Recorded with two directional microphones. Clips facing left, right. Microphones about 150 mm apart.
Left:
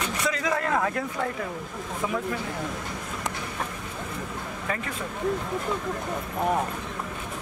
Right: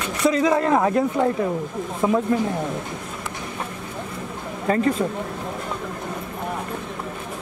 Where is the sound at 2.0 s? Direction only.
40° right (ahead or behind).